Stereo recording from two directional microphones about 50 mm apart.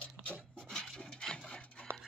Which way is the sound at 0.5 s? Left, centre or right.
Centre.